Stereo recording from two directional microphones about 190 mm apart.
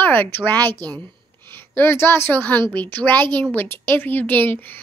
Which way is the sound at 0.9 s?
25° right (ahead or behind).